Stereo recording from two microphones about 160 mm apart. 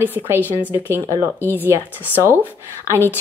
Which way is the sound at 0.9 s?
25° right (ahead or behind).